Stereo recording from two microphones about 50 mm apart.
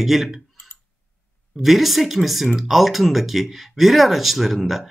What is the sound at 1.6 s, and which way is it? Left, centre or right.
Speech, centre.